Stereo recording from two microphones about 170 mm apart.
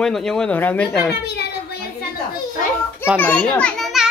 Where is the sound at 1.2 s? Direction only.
70° left (ahead or behind).